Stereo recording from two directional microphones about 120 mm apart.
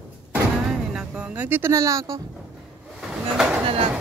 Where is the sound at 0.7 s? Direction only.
5° right (ahead or behind); by 2.2 s 25° right (ahead or behind).